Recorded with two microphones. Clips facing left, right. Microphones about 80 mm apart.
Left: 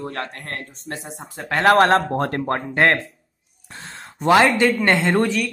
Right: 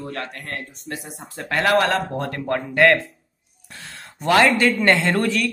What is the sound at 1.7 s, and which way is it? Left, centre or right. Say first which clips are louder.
Speech: left 5 dB; left.